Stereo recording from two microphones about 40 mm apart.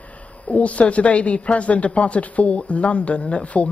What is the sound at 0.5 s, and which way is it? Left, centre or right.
A man's voice, left.